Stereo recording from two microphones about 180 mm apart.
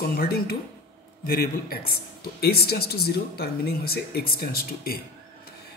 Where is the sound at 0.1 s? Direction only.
60° left (ahead or behind).